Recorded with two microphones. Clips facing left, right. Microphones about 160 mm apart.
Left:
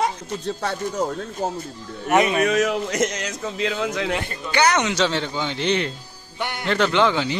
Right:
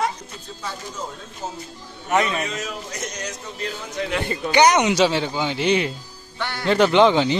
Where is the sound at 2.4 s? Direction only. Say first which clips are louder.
Left 10 dB; 70° left (ahead or behind); by 4.1 s 90° left.